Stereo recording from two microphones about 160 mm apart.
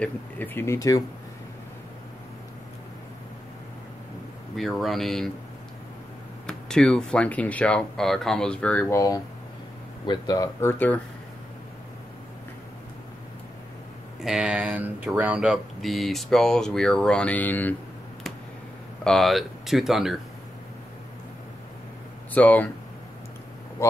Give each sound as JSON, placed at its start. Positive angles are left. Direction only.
{"t": 0.0, "sound": "speech", "side_deg": 15}
{"t": 4.6, "sound": "speech", "side_deg": 0}
{"t": 6.4, "sound": "speech", "side_deg": 5}
{"t": 10.0, "sound": "speech", "side_deg": 25}
{"t": 14.2, "sound": "speech", "side_deg": -5}
{"t": 19.0, "sound": "speech", "side_deg": 0}
{"t": 22.3, "sound": "speech", "side_deg": 10}
{"t": 23.8, "sound": "speech", "side_deg": 15}